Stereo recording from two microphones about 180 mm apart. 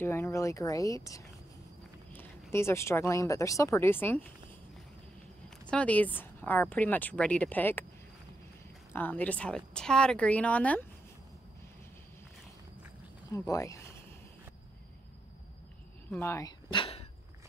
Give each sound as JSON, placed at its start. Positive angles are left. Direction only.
{"t": 0.0, "sound": "speech", "side_deg": 15}
{"t": 5.7, "sound": "speech", "side_deg": 5}
{"t": 8.9, "sound": "speech", "side_deg": 10}
{"t": 13.3, "sound": "speech", "side_deg": 20}
{"t": 16.1, "sound": "speech", "side_deg": 15}